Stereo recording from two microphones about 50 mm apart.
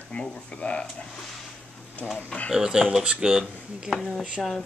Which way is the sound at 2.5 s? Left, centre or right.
Centre.